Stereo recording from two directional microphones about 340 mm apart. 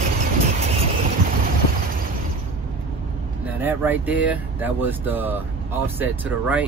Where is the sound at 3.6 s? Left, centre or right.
Centre.